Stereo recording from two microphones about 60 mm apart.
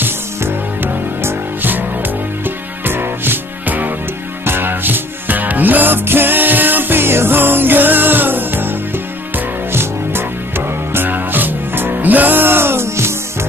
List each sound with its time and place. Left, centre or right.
0.0 s music: right